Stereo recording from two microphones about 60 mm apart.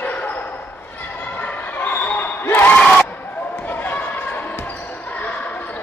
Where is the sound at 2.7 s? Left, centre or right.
Centre.